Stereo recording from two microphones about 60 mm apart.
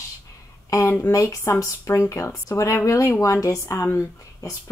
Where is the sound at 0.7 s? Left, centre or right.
Left.